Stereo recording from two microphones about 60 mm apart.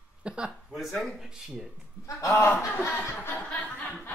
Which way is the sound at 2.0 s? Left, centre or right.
Left.